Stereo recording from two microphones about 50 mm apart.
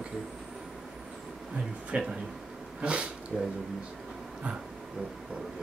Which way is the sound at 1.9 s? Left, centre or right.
Right.